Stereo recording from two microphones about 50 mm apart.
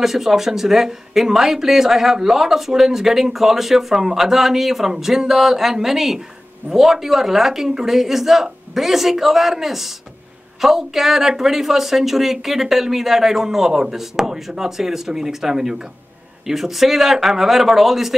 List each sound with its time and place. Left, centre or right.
0.0 s speech: centre